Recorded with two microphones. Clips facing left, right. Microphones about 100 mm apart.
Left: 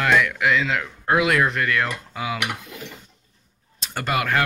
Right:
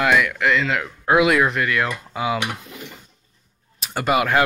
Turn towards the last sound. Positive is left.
turn(degrees=-15)  # may be behind; listen again after turning